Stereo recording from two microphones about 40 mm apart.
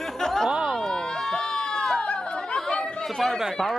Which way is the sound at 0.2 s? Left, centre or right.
Centre.